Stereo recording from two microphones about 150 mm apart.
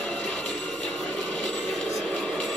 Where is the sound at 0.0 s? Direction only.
5° left (ahead or behind).